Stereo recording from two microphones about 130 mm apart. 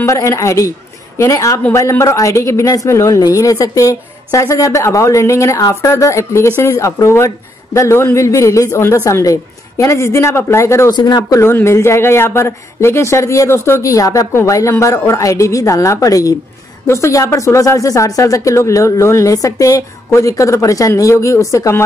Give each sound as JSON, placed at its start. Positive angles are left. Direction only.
{"t": 0.0, "sound": "speech", "side_deg": 20}
{"t": 10.9, "sound": "speech", "side_deg": 35}